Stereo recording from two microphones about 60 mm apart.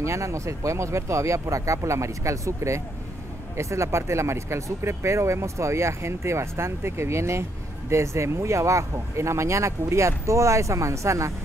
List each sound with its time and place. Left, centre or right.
0.0 s speech: right